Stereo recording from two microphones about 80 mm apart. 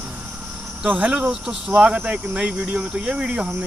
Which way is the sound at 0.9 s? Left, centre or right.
Centre.